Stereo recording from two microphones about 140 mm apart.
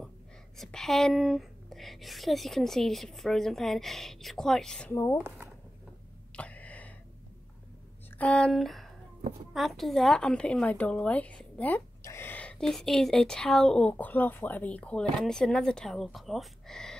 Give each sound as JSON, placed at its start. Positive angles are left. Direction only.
{"t": 0.6, "sound": "a woman's voice", "side_deg": 5}
{"t": 5.1, "sound": "speech", "side_deg": -10}
{"t": 6.3, "sound": "a sound", "side_deg": 10}
{"t": 8.2, "sound": "a woman's voice", "side_deg": 5}